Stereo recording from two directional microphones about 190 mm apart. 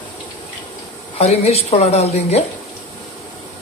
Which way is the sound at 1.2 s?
30° left (ahead or behind).